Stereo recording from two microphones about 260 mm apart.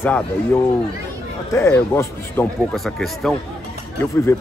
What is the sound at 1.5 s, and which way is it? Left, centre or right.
Speech, centre.